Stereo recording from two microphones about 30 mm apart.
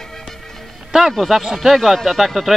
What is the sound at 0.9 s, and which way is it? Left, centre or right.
Speech, centre.